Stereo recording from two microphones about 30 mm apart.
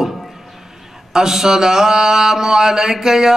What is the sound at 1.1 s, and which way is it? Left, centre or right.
Speech, centre.